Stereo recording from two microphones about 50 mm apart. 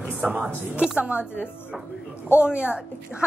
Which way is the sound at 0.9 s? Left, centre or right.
Right.